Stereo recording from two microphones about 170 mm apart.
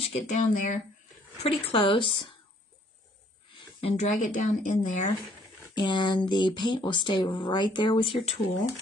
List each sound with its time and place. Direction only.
0.0 s speech: 40° left (ahead or behind)
1.4 s speech: 35° left (ahead or behind)
3.8 s speech: 45° left (ahead or behind)
5.6 s speech: 25° left (ahead or behind)